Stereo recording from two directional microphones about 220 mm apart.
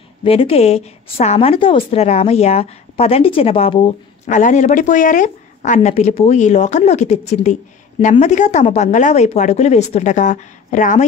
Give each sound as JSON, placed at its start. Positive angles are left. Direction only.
{"t": 0.2, "sound": "a woman's voice", "side_deg": 25}